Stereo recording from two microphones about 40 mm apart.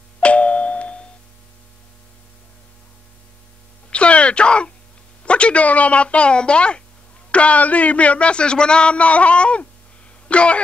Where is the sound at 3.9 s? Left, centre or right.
Left.